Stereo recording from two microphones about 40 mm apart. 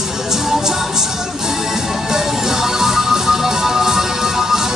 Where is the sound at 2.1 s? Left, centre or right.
Centre.